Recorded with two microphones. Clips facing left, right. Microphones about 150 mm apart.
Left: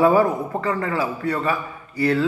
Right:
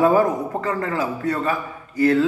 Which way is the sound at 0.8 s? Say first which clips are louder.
Even; 45° right (ahead or behind).